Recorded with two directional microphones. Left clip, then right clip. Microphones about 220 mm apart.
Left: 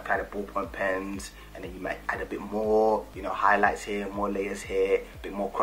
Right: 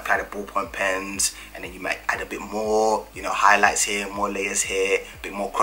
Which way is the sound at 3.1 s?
5° left (ahead or behind).